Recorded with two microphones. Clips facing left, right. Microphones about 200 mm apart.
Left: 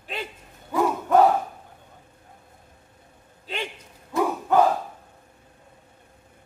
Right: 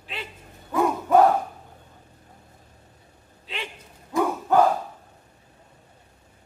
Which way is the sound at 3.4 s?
45° left (ahead or behind).